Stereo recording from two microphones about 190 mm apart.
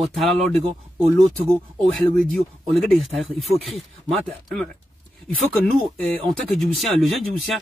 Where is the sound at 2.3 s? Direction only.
Centre (ahead or behind).